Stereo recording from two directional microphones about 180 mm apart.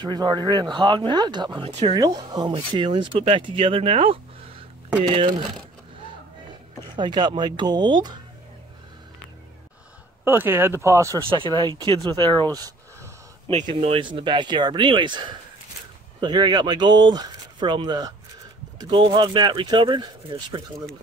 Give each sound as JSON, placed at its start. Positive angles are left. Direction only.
{"t": 0.0, "sound": "speech", "side_deg": -25}
{"t": 2.0, "sound": "speech", "side_deg": -20}
{"t": 7.0, "sound": "speech", "side_deg": -25}
{"t": 10.2, "sound": "speech", "side_deg": -10}
{"t": 11.2, "sound": "speech", "side_deg": -30}
{"t": 13.5, "sound": "speech", "side_deg": -40}
{"t": 13.7, "sound": "speech", "side_deg": -30}